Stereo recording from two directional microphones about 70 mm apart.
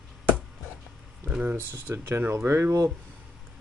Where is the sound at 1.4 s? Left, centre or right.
Right.